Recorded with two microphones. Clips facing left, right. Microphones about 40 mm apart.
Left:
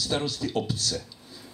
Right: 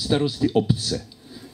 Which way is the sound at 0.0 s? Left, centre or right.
Centre.